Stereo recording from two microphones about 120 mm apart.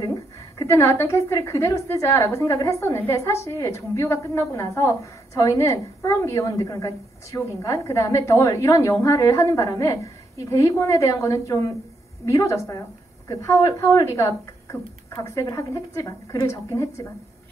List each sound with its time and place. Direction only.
0.0 s a woman's voice: 25° left (ahead or behind)